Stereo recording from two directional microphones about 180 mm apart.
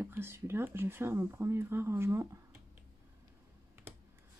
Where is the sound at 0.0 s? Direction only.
15° right (ahead or behind).